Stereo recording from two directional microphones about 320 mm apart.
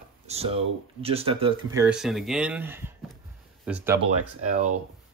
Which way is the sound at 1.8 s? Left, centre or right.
Centre.